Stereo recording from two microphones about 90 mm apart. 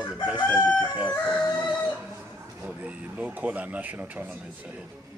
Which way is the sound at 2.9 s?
15° right (ahead or behind).